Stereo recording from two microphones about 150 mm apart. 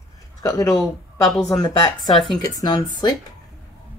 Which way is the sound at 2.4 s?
25° left (ahead or behind).